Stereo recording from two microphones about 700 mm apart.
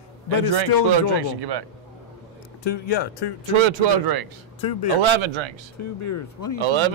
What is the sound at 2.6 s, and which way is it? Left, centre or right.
Speech, left.